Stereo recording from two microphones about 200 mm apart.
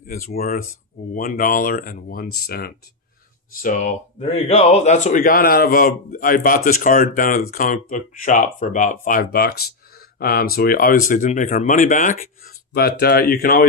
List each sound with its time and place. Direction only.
0.0 s a man's voice: 45° left (ahead or behind)
4.2 s a man's voice: 30° left (ahead or behind); by 13.7 s 45° left (ahead or behind)